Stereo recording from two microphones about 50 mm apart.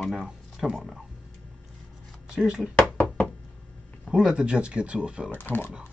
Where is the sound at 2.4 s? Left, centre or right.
Centre.